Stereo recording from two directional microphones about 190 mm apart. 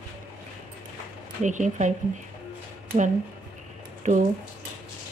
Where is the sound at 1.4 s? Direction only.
40° right (ahead or behind).